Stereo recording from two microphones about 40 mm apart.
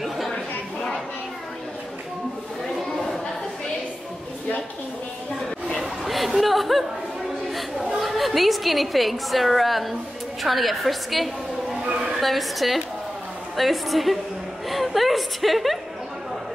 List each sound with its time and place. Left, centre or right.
6.0 s a sound: centre
7.4 s chatter: centre
8.0 s a woman's voice: centre
11.8 s a sound: right
12.2 s a woman's voice: centre
14.7 s chuckle: centre